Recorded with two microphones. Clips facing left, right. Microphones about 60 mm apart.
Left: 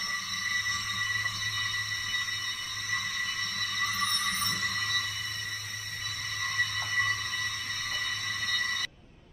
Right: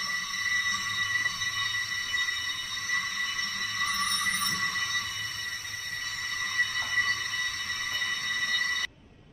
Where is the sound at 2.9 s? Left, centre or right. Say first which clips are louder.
Right 2 dB; centre.